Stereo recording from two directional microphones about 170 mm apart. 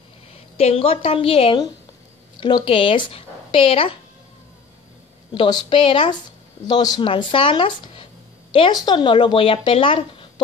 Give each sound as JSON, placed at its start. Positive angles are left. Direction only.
{"t": 0.3, "sound": "a woman's voice", "side_deg": 35}
{"t": 5.3, "sound": "a woman's voice", "side_deg": 30}